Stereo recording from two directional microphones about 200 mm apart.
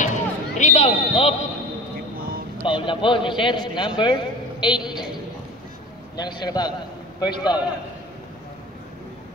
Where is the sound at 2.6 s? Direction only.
25° left (ahead or behind).